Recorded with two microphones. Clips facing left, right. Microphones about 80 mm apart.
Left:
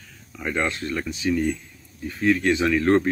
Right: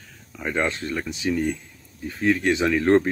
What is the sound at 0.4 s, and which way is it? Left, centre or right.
Speech, right.